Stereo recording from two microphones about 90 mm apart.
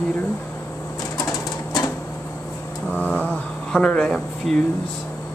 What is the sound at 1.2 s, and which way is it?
Sewing machine, 40° left (ahead or behind).